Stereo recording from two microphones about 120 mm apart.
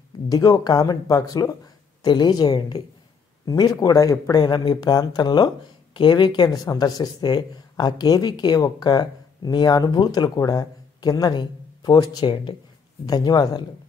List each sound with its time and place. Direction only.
0.3 s speech: 35° left (ahead or behind)